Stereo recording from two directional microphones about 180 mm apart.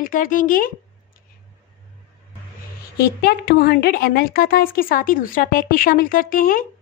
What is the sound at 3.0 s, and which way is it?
A woman's voice, 60° left (ahead or behind).